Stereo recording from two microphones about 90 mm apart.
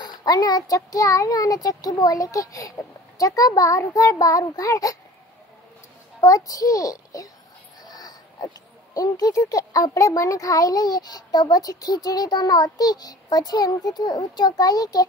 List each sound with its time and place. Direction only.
0.0 s speech: 50° left (ahead or behind)
6.2 s speech: 40° left (ahead or behind)
7.8 s a sound: 45° left (ahead or behind)
8.9 s a child's voice: 45° left (ahead or behind)